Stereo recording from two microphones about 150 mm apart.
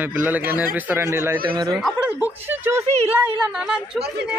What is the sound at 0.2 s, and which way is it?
Speech, 10° right (ahead or behind).